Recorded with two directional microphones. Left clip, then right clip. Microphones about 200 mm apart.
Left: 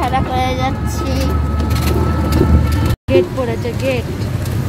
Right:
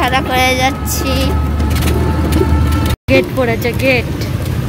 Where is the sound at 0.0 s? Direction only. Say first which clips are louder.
Right 4 dB; 10° right (ahead or behind).